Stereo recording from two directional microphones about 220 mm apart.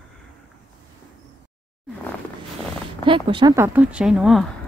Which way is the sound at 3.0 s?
20° right (ahead or behind).